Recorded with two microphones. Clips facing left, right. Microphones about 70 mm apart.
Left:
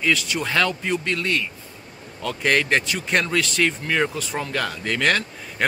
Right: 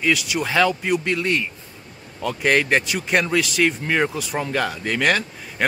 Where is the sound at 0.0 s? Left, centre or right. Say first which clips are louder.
Right 1 dB; centre.